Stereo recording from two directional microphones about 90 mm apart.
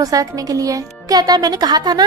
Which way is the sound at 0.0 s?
40° right (ahead or behind).